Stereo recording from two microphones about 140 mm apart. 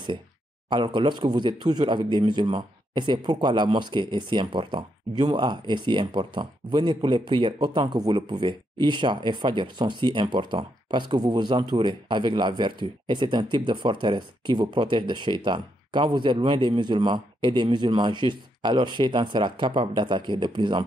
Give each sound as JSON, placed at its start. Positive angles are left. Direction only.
{"t": 0.7, "sound": "speech", "side_deg": -35}